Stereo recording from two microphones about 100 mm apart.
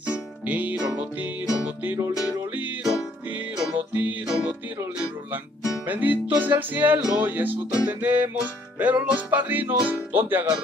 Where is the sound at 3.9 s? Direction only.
15° right (ahead or behind).